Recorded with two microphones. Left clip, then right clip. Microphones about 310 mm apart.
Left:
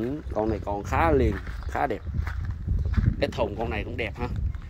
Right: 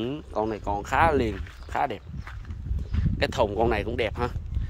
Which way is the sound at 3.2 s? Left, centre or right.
Centre.